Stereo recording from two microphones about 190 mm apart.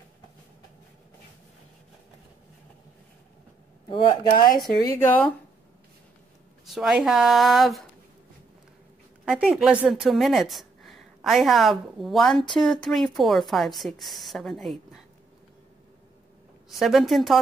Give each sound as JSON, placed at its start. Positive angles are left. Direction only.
{"t": 3.9, "sound": "speech", "side_deg": 25}
{"t": 4.8, "sound": "speech", "side_deg": 10}
{"t": 6.6, "sound": "a woman's voice", "side_deg": 0}
{"t": 9.3, "sound": "a woman's voice", "side_deg": -5}
{"t": 16.6, "sound": "a woman's voice", "side_deg": 0}